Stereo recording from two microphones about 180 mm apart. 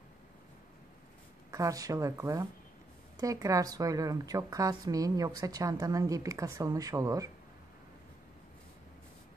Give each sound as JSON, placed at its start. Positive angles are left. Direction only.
{"t": 1.5, "sound": "a woman's voice", "side_deg": -20}